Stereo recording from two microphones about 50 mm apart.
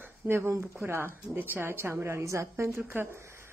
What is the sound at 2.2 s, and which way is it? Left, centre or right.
Speech, right.